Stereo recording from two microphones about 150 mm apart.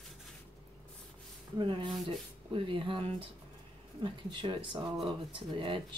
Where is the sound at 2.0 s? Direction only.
35° right (ahead or behind).